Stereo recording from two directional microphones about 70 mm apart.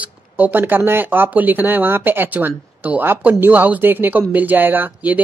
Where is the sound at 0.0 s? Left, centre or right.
Right.